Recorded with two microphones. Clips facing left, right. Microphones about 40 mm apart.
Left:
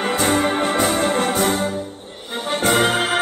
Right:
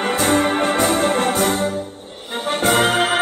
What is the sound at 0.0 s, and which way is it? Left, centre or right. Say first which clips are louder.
Organ: right 1 dB; centre.